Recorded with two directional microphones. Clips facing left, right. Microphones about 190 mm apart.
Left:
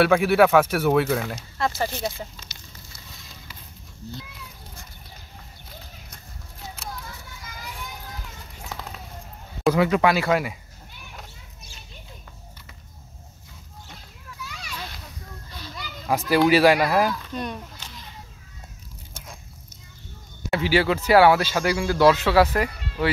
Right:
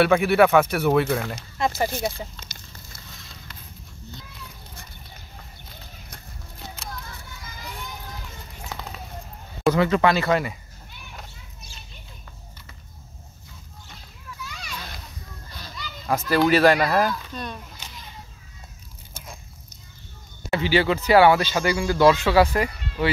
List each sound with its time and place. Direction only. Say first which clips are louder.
0.0 s speech: even; centre (ahead or behind)
1.6 s speech: right 2 dB; 15° right (ahead or behind)
2.4 s a sound: right 2 dB; 5° left (ahead or behind)
8.6 s a sound: even; centre (ahead or behind)
9.6 s speech: even; 5° left (ahead or behind)
15.8 s a child's voice: even; 10° left (ahead or behind)
20.4 s speech: even; 5° left (ahead or behind)